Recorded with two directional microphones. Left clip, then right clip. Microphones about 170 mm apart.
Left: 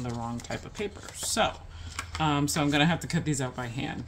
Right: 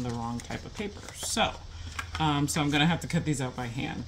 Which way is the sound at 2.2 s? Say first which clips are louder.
Left 1 dB; 40° left (ahead or behind).